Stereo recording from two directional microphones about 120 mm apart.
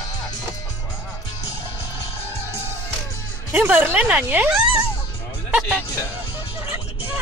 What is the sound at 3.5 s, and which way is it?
Speech, 15° right (ahead or behind).